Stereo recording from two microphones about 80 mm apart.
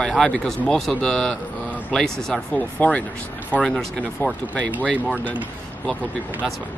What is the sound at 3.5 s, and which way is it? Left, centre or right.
Speech, centre.